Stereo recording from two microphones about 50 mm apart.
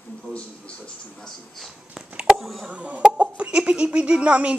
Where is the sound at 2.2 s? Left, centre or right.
Centre.